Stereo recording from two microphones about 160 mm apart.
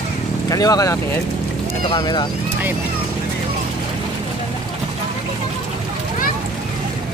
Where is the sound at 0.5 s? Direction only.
25° left (ahead or behind).